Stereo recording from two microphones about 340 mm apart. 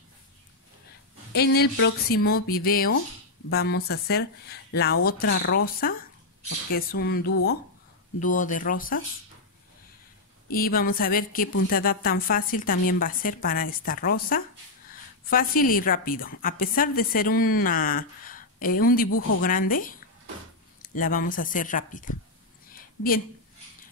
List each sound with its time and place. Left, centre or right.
1.3 s a woman's voice: left
10.5 s a woman's voice: left
19.0 s speech: left
19.4 s a woman's voice: left
22.7 s a sound: left